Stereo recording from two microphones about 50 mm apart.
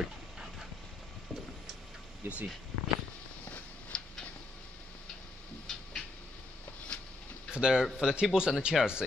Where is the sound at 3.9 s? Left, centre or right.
Centre.